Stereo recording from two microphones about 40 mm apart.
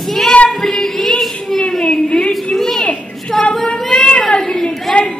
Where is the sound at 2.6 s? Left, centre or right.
Centre.